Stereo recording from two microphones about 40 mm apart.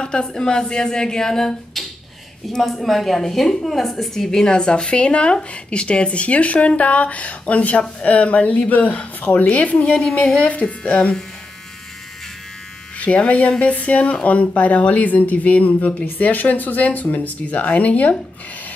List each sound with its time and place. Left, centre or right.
0.0 s speech: left
9.9 s speech: left
13.0 s speech: left
16.1 s speech: left